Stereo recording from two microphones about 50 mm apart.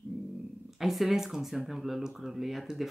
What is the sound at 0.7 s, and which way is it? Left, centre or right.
Speech, centre.